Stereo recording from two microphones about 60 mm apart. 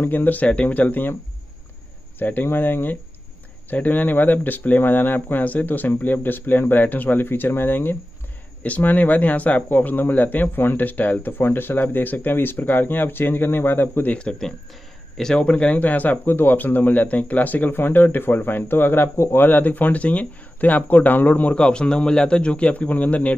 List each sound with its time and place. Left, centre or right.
0.0 s speech: left
2.1 s speech: left
14.1 s speech: centre